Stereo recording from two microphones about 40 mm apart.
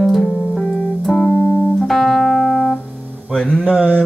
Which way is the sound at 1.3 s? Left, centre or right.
Right.